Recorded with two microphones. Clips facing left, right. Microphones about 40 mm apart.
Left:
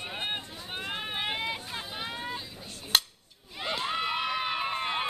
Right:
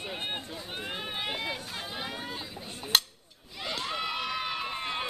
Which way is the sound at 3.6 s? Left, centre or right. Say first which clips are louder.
Left 3 dB; centre.